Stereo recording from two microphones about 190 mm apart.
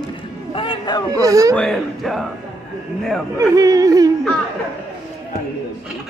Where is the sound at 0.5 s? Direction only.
25° left (ahead or behind).